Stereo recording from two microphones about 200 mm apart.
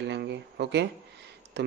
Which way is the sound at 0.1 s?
55° right (ahead or behind).